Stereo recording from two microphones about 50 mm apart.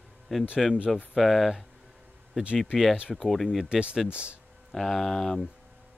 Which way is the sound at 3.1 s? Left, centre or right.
Centre.